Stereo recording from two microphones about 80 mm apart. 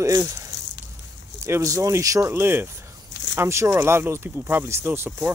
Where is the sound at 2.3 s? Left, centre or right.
Right.